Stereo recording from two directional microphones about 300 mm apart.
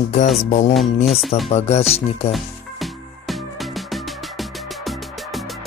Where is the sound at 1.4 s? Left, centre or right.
Left.